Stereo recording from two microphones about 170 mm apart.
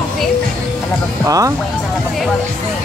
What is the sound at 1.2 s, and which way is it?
Speech, 20° right (ahead or behind).